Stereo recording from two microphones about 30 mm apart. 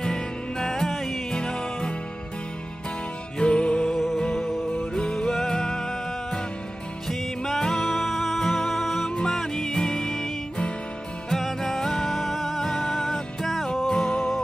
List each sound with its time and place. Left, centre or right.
0.0 s music: left
1.3 s music: left
3.3 s music: left
3.9 s music: centre
4.7 s music: left
7.1 s music: centre
7.6 s music: centre
7.9 s music: centre
9.1 s music: left
11.6 s music: centre